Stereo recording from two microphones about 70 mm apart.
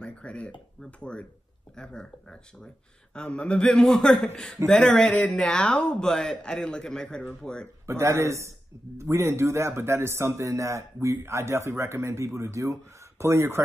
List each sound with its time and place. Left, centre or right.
0.0 s a sound: centre
0.8 s a man's voice: centre
7.8 s speech: right